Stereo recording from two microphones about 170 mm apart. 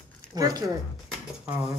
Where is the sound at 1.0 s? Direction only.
5° right (ahead or behind).